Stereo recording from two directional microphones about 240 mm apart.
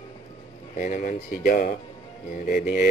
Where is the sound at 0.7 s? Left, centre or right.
Left.